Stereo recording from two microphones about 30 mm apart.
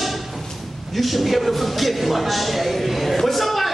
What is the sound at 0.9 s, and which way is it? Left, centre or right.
A man's voice, centre.